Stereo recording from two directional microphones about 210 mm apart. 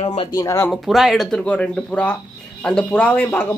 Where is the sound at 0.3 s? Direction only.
15° left (ahead or behind).